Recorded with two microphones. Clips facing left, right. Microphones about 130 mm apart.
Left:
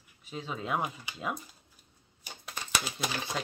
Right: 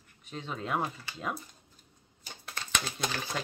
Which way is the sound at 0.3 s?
5° left (ahead or behind).